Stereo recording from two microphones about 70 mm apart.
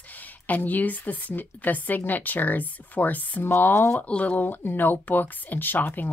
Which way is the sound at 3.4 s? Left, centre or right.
Left.